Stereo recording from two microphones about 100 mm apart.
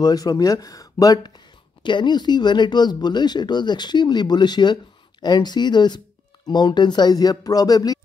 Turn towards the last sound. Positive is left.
turn(degrees=40)  # may be behind; listen again after turning